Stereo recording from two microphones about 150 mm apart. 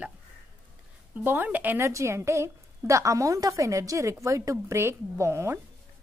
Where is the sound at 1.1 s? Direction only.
10° right (ahead or behind).